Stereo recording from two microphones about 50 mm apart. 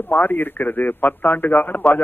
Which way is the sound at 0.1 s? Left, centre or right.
Left.